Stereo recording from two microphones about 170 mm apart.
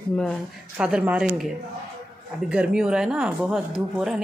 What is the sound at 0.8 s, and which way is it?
Speech, 5° right (ahead or behind).